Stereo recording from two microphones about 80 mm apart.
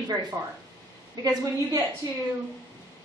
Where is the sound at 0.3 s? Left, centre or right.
Right.